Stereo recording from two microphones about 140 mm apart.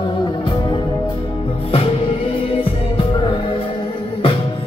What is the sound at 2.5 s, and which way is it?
Music, 40° left (ahead or behind).